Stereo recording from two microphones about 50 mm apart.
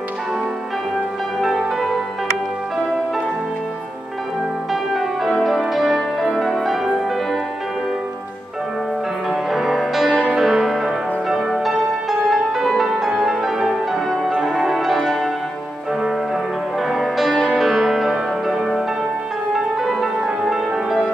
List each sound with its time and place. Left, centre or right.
4.9 s music: centre
9.3 s music: centre
16.9 s music: centre